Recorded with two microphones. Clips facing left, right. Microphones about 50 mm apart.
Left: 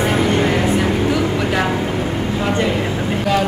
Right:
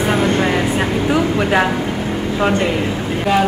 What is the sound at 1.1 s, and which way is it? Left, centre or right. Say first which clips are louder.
Speech: right 2 dB; right.